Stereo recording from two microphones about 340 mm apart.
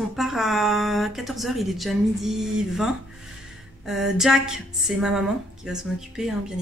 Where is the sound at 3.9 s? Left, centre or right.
Centre.